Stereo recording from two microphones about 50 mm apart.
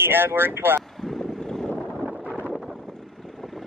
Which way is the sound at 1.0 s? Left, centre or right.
Centre.